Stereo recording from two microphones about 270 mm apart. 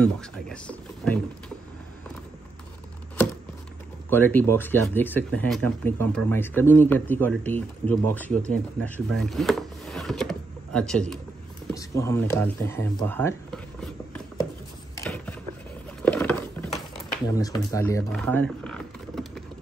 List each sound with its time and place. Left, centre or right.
0.0 s speech: centre
4.1 s speech: centre
11.7 s a sound: centre
17.4 s speech: centre